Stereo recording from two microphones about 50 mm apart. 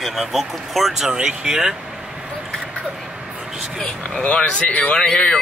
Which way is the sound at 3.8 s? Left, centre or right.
Left.